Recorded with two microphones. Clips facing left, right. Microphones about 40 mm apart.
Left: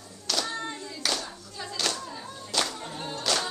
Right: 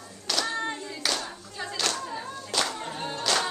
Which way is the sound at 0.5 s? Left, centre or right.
Centre.